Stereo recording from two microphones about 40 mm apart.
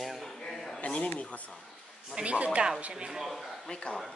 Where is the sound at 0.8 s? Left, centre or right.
Left.